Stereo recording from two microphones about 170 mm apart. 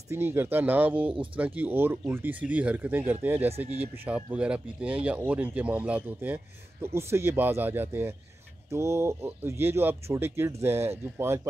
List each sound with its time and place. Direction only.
0.1 s a man's voice: 15° right (ahead or behind)
3.4 s speech: 35° right (ahead or behind)
3.9 s a man's voice: 10° right (ahead or behind)